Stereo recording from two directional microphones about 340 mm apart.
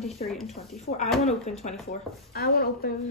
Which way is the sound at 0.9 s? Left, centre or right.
Left.